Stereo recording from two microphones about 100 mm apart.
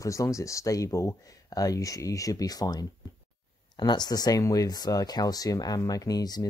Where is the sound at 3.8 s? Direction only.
45° left (ahead or behind).